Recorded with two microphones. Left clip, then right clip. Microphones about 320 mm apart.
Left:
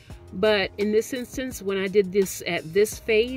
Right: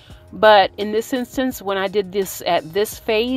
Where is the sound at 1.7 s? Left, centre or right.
Centre.